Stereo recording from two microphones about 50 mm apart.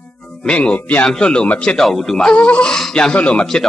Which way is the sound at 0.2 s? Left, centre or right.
Centre.